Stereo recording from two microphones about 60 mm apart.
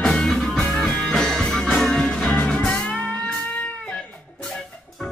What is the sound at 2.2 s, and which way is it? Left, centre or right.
Music, left.